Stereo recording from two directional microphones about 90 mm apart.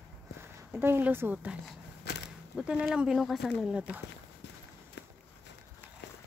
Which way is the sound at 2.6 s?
10° right (ahead or behind).